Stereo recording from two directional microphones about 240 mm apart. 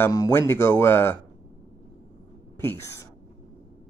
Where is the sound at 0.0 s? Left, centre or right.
Centre.